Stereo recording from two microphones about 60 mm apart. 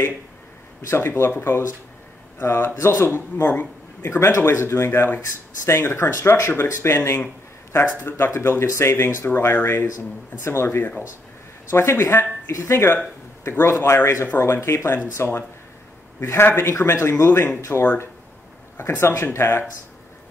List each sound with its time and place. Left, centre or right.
0.8 s speech: left